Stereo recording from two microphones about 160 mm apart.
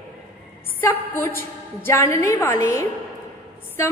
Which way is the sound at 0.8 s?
15° left (ahead or behind).